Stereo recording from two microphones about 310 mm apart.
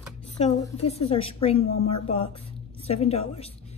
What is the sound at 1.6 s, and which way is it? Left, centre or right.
Speech, left.